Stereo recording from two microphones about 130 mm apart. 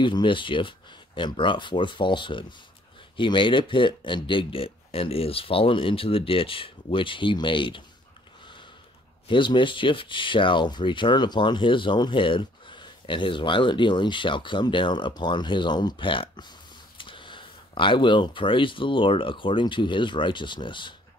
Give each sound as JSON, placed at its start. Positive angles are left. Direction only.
{"t": 0.0, "sound": "speech", "side_deg": 40}
{"t": 9.3, "sound": "speech", "side_deg": 40}